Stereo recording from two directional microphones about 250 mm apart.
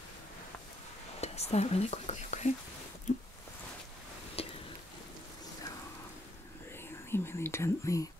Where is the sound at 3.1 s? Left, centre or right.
Left.